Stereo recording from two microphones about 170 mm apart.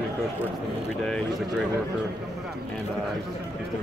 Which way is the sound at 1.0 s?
5° left (ahead or behind).